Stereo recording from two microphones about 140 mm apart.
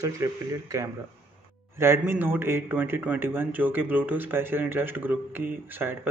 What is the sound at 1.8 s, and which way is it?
A man's voice, 15° right (ahead or behind).